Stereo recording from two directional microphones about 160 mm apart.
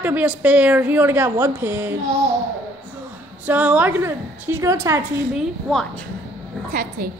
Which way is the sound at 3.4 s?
10° right (ahead or behind).